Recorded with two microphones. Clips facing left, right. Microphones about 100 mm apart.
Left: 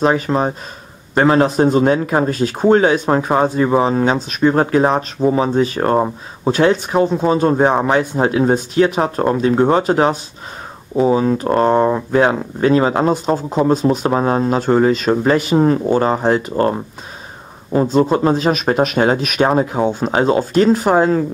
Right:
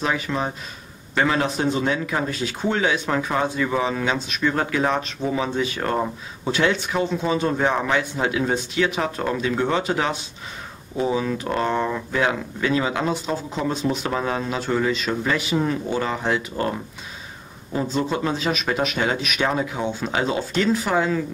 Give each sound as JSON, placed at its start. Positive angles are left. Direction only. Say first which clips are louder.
{"t": 0.0, "sound": "speech", "louder": "left 9 dB", "side_deg": 40}